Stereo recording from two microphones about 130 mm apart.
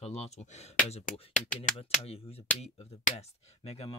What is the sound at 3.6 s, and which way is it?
Speech, 55° left (ahead or behind).